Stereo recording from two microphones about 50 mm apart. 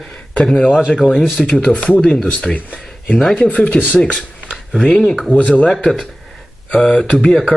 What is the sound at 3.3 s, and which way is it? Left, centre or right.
Speech, left.